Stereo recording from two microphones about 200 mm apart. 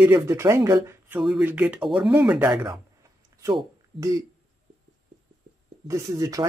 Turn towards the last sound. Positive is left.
turn(degrees=-15)  # may be behind; listen again after turning